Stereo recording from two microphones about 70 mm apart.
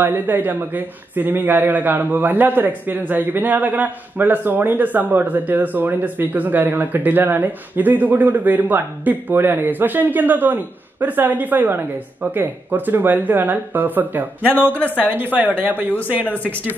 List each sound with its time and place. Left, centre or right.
0.0 s a man's voice: right
16.3 s speech: left